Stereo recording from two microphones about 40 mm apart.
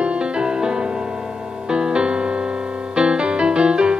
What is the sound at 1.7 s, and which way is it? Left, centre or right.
Music, right.